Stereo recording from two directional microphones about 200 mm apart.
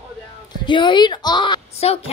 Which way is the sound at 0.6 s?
25° left (ahead or behind).